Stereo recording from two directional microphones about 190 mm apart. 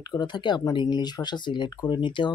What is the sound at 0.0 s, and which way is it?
Speech, 20° left (ahead or behind).